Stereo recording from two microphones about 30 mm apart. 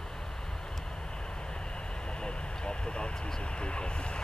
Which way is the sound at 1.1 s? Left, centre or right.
Left.